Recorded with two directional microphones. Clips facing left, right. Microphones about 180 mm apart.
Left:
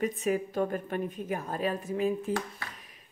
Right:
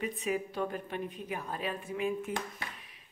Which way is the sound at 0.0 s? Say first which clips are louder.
Left 5 dB; 45° left (ahead or behind).